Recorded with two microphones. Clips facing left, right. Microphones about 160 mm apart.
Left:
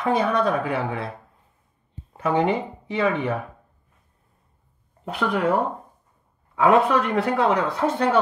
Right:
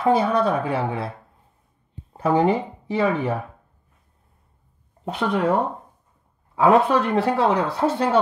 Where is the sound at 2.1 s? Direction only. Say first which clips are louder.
Right 2 dB; 35° right (ahead or behind).